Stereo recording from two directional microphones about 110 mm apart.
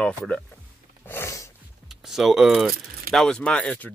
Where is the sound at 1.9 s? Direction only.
5° right (ahead or behind).